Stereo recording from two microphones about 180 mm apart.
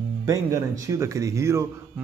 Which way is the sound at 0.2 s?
15° right (ahead or behind).